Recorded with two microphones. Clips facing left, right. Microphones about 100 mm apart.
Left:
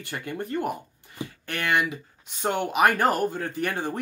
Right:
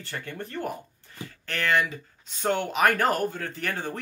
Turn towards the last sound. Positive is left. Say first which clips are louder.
# left 3 dB
turn(degrees=10)  # may be behind; listen again after turning